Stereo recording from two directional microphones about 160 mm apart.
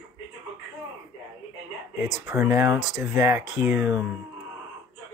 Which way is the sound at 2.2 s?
15° right (ahead or behind).